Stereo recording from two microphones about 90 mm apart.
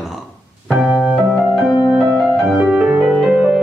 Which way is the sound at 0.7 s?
10° right (ahead or behind).